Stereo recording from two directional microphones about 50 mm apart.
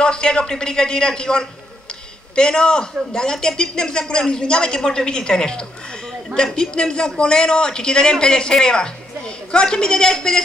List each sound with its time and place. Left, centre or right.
0.0 s a man's voice: centre